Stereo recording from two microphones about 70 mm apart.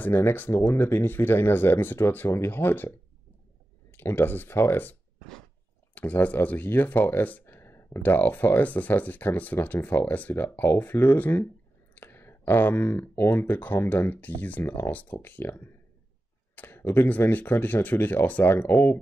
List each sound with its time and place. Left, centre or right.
0.0 s speech: left
3.9 s speech: left
5.9 s speech: left
7.4 s a sound: left
8.0 s speech: left
16.5 s a sound: left
17.1 s speech: left